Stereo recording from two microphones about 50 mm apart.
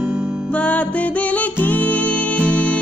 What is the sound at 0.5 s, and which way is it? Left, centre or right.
Music, left.